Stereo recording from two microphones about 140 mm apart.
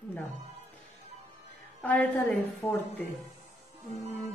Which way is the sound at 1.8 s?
10° left (ahead or behind).